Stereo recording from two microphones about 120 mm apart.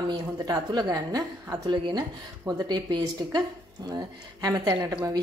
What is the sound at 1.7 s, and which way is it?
A woman's voice, 35° right (ahead or behind).